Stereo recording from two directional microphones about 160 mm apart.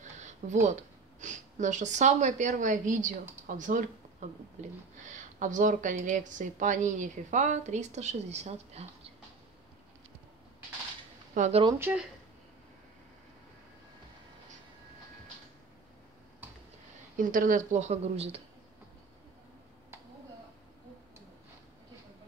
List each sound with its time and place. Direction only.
0.4 s speech: 55° right (ahead or behind)
11.3 s speech: 50° right (ahead or behind)
11.8 s speech: 10° right (ahead or behind)
17.2 s speech: 55° right (ahead or behind); by 18.4 s 40° right (ahead or behind)